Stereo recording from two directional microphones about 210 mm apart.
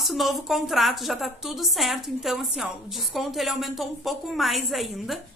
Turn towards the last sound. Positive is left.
turn(degrees=0)  # may be behind; listen again after turning